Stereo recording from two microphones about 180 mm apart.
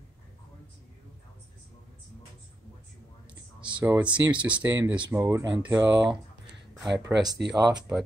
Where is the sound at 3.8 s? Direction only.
10° right (ahead or behind).